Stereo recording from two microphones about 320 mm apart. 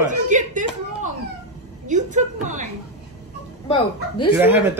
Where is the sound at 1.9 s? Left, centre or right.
Right.